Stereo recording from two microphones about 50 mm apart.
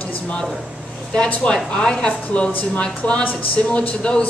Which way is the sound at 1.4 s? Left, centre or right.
Centre.